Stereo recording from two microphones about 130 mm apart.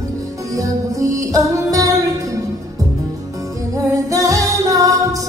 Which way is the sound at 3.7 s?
25° right (ahead or behind).